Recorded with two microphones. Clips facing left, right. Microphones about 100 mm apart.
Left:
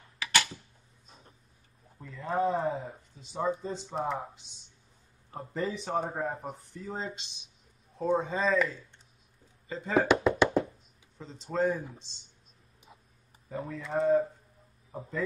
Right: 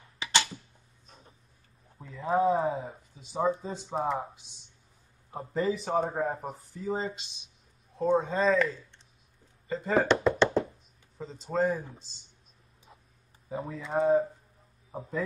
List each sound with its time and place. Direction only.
0.2 s a sound: 25° right (ahead or behind)
2.0 s speech: centre (ahead or behind)
5.3 s speech: 5° right (ahead or behind)
10.2 s music: 10° left (ahead or behind)
11.1 s speech: centre (ahead or behind)
13.6 s speech: 5° right (ahead or behind)
14.9 s speech: 15° right (ahead or behind)